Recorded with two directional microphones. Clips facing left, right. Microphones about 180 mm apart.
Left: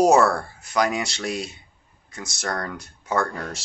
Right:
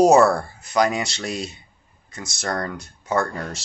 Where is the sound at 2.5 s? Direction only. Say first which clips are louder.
Right 4 dB; 10° right (ahead or behind).